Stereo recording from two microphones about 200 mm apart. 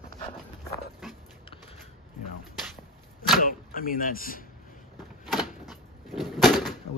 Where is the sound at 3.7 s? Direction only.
45° left (ahead or behind).